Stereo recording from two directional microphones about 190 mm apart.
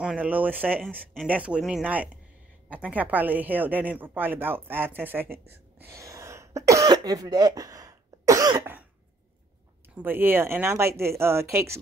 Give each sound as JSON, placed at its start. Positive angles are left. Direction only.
{"t": 0.0, "sound": "speech", "side_deg": -5}
{"t": 5.8, "sound": "cough", "side_deg": -15}
{"t": 9.9, "sound": "speech", "side_deg": -10}